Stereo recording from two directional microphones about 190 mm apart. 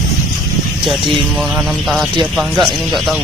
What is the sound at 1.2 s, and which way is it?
Speech, 5° right (ahead or behind).